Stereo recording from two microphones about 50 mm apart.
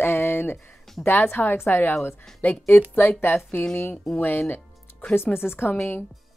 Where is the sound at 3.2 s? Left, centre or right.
Left.